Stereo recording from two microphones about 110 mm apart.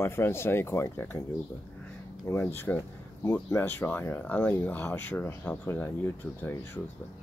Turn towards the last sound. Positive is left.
turn(degrees=15)  # may be behind; listen again after turning